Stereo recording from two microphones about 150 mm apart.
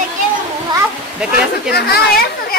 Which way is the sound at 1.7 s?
90° left.